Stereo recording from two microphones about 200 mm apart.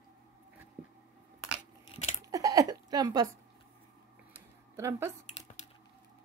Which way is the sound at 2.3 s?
15° right (ahead or behind).